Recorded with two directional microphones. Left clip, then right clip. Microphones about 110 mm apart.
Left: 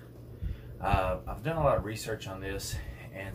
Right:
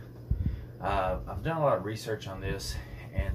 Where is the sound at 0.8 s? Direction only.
25° left (ahead or behind).